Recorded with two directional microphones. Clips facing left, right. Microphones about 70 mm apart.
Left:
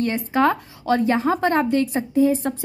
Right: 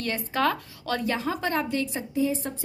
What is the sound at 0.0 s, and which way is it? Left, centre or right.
Speech, left.